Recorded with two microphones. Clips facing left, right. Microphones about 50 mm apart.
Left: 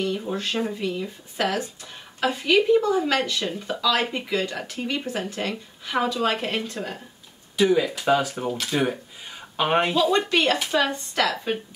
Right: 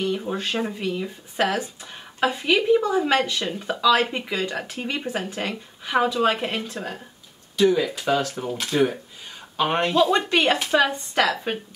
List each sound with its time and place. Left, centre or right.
0.0 s speech: centre
7.5 s speech: centre
9.6 s speech: centre
9.9 s speech: centre